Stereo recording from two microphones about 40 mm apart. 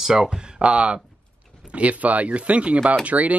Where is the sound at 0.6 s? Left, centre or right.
Right.